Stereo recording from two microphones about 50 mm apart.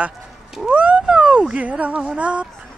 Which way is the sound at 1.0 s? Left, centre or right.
Centre.